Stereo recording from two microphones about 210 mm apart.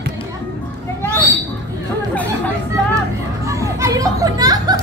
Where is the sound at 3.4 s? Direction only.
15° right (ahead or behind).